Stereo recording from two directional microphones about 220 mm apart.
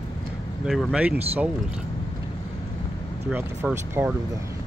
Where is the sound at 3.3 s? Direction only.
5° right (ahead or behind).